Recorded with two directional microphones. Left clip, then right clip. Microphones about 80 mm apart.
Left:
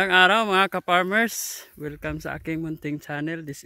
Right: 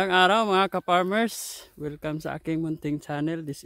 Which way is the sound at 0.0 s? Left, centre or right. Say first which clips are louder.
Left 3 dB; centre.